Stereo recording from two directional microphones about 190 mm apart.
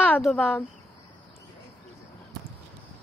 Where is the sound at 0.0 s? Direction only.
5° left (ahead or behind).